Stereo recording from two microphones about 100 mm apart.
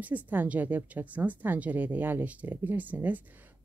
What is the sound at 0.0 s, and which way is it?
A woman's voice, 15° right (ahead or behind).